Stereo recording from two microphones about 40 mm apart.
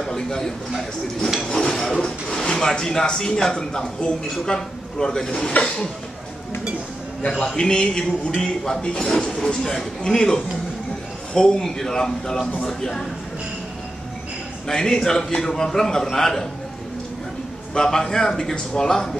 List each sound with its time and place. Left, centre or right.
0.0 s a sound: centre
1.4 s speech: centre
7.4 s a man's voice: centre
14.7 s a man's voice: centre
17.7 s a man's voice: centre